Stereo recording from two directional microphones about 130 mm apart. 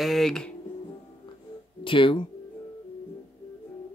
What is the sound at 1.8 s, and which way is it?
Speech, 40° left (ahead or behind).